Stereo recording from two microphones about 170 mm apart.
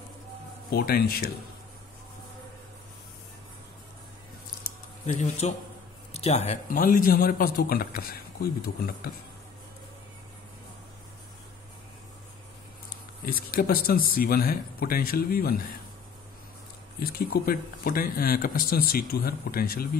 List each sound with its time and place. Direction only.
0.7 s speech: 65° left (ahead or behind)
5.0 s a man's voice: 45° left (ahead or behind); by 9.1 s 60° left (ahead or behind)
13.2 s speech: 60° left (ahead or behind)
17.0 s speech: 60° left (ahead or behind)